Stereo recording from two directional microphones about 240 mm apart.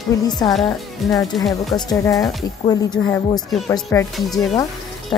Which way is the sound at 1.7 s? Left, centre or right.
Centre.